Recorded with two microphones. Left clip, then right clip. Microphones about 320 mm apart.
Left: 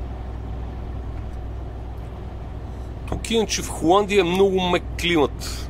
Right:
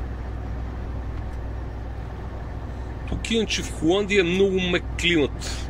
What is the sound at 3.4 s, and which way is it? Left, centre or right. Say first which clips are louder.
Speech: left 3 dB; left.